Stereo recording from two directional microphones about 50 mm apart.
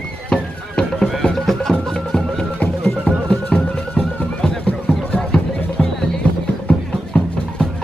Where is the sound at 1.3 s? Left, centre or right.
Centre.